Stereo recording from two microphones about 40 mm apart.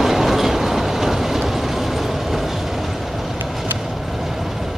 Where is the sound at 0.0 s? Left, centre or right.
Centre.